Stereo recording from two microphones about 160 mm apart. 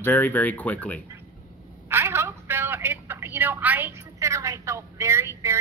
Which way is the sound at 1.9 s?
15° right (ahead or behind).